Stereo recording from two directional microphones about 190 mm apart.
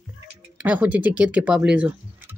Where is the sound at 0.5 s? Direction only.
5° right (ahead or behind).